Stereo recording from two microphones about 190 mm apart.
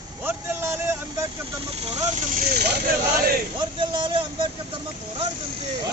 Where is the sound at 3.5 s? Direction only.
25° right (ahead or behind).